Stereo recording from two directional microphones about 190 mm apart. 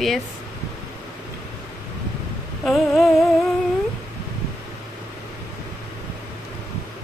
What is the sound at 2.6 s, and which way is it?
Speech, centre (ahead or behind).